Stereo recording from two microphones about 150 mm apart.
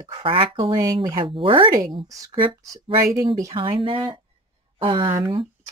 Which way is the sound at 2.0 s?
25° right (ahead or behind).